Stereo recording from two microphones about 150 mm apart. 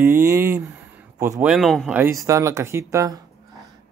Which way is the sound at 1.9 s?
20° right (ahead or behind).